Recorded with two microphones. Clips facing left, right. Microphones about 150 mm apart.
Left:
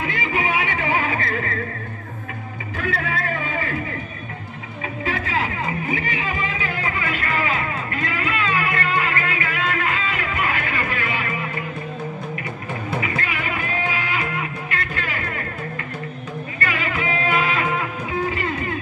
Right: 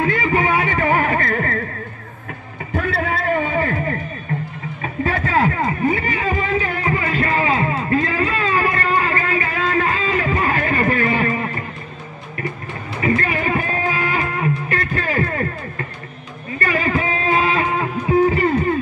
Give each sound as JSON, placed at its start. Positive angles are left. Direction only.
{"t": 0.0, "sound": "music", "side_deg": -45}
{"t": 2.7, "sound": "vehicle", "side_deg": -40}
{"t": 5.0, "sound": "a sound", "side_deg": -45}
{"t": 13.0, "sound": "music", "side_deg": -40}
{"t": 16.5, "sound": "music", "side_deg": -40}